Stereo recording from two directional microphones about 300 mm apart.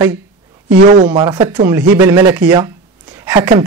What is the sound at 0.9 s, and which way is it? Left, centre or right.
Speech, right.